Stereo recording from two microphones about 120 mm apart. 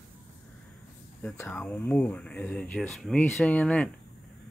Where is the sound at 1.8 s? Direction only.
15° left (ahead or behind).